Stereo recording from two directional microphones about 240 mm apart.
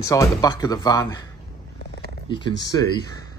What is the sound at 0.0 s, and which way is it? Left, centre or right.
Speech, centre.